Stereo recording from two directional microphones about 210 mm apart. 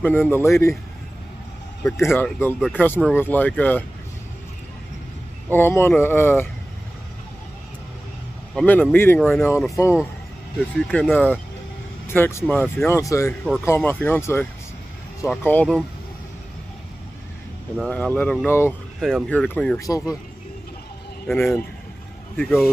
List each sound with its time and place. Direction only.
0.0 s speech: 10° left (ahead or behind)
2.1 s speech: 10° left (ahead or behind)
5.5 s speech: 10° left (ahead or behind)
8.5 s speech: 10° left (ahead or behind)
17.7 s speech: 5° left (ahead or behind)
19.8 s speech: 15° left (ahead or behind)
21.3 s speech: centre (ahead or behind)